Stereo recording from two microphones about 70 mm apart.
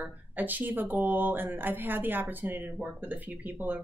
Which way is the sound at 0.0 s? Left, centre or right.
Right.